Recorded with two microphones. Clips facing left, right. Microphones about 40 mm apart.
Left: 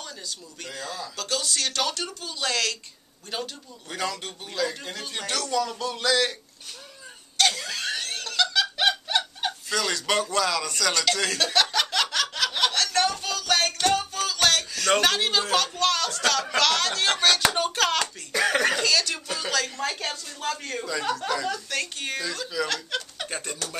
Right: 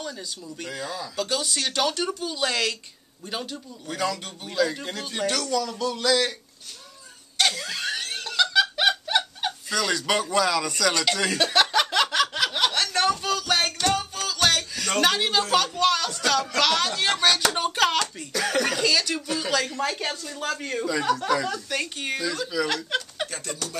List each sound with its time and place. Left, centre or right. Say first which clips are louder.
0.7 s speech: right 1 dB; centre
3.9 s a woman's voice: right 3 dB; centre
5.5 s music: right 1 dB; centre
7.3 s snicker: even; centre
13.9 s music: left 1 dB; centre
15.0 s a woman's voice: right 5 dB; centre
16.3 s a sound: right 1 dB; centre
17.6 s a woman's voice: right 1 dB; centre
18.3 s music: left 2 dB; centre
18.8 s a woman's voice: right 1 dB; centre
22.7 s speech: right 3 dB; centre
23.3 s music: even; centre